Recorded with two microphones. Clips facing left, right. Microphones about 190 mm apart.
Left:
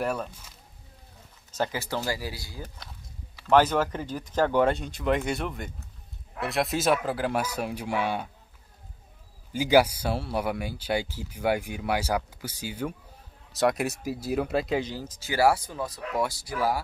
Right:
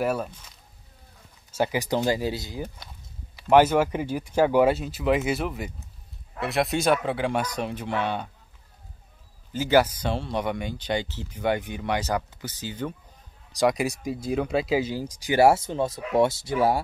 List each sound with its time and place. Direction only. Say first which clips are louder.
0.0 s speech: right 3 dB; 5° right (ahead or behind)
9.5 s speech: even; 10° left (ahead or behind); by 16.8 s 25° right (ahead or behind)